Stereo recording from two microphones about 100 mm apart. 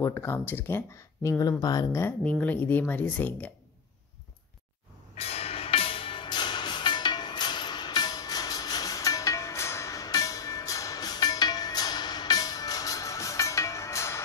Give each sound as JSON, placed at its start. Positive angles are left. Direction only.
{"t": 0.0, "sound": "speech", "side_deg": 25}
{"t": 1.9, "sound": "speech", "side_deg": 25}
{"t": 2.2, "sound": "speech", "side_deg": 15}
{"t": 5.1, "sound": "music", "side_deg": 90}